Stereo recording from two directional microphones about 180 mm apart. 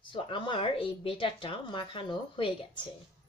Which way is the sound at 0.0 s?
25° left (ahead or behind).